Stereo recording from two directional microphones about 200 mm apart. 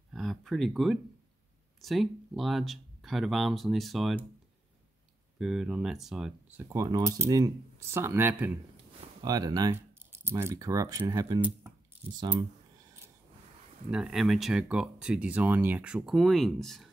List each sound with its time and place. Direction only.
0.1 s a sound: centre (ahead or behind)
1.8 s speech: centre (ahead or behind)
5.4 s speech: centre (ahead or behind); by 11.4 s 20° right (ahead or behind)
13.8 s speech: 5° right (ahead or behind)